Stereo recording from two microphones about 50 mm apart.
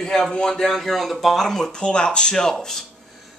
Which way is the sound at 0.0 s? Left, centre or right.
Centre.